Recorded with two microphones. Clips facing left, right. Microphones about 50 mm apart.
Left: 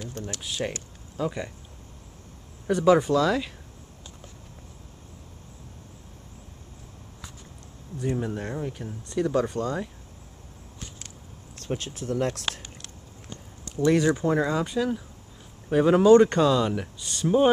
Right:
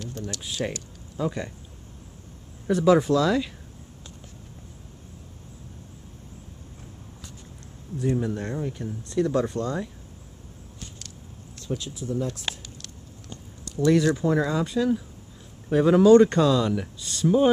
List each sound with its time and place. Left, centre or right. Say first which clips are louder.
0.2 s a sound: right 1 dB; left
0.6 s speech: right 2 dB; centre
2.7 s speech: right 1 dB; centre
8.4 s speech: right 1 dB; centre
9.1 s speech: right 1 dB; left
11.7 s speech: even; left
12.0 s speech: left 4 dB; left
13.7 s speech: right 1 dB; left